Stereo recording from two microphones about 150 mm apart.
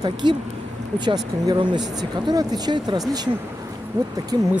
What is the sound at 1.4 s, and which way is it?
Speech, 30° right (ahead or behind).